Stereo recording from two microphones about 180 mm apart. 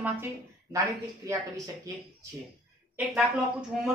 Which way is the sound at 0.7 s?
20° right (ahead or behind).